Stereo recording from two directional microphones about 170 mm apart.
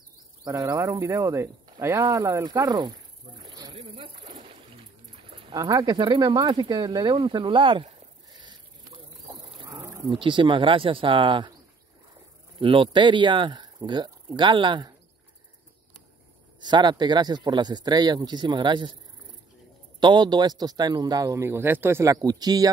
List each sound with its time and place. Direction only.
0.4 s speech: 20° right (ahead or behind)
3.4 s snake: 25° right (ahead or behind)
3.8 s a sound: 30° right (ahead or behind)
4.5 s music: 35° right (ahead or behind)
5.5 s a sound: 20° right (ahead or behind)
10.0 s a man's voice: 30° right (ahead or behind)
12.5 s a man's voice: 30° right (ahead or behind)
16.6 s a man's voice: 25° right (ahead or behind)
20.0 s a man's voice: 25° right (ahead or behind)